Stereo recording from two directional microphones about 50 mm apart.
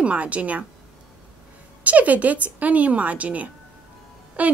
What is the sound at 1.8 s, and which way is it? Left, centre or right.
Speech, right.